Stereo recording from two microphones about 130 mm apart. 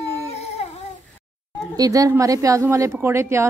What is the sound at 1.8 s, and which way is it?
Speech, 25° right (ahead or behind).